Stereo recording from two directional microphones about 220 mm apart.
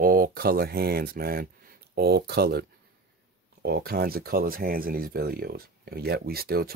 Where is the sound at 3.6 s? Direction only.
45° right (ahead or behind).